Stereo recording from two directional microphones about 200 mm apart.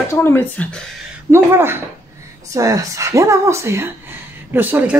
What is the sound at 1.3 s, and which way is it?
Speech, 10° right (ahead or behind).